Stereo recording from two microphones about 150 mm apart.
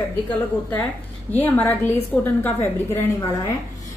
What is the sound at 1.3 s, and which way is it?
A woman's voice, 10° left (ahead or behind).